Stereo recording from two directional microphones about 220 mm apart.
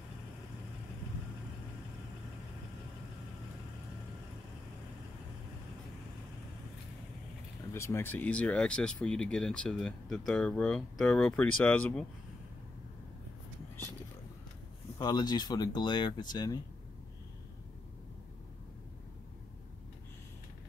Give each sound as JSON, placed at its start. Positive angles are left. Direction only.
{"t": 7.7, "sound": "speech", "side_deg": 10}
{"t": 15.0, "sound": "speech", "side_deg": 20}